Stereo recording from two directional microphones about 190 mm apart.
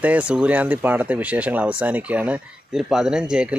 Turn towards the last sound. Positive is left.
turn(degrees=-5)  # may be behind; listen again after turning